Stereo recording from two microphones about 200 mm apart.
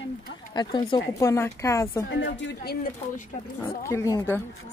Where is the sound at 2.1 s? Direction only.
65° left (ahead or behind).